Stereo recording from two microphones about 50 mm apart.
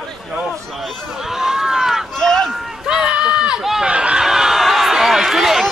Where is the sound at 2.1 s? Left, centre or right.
Centre.